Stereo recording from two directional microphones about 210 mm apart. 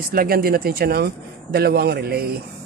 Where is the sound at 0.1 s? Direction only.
45° right (ahead or behind).